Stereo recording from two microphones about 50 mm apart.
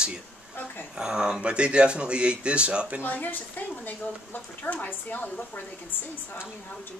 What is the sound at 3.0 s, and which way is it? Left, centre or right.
A woman's voice, left.